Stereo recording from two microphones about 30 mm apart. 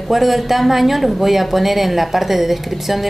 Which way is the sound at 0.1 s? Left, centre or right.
Centre.